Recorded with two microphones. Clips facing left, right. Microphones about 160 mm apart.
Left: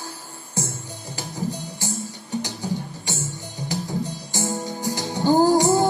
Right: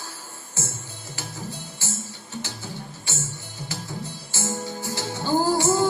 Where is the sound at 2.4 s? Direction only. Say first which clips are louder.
Left 7 dB; 15° left (ahead or behind).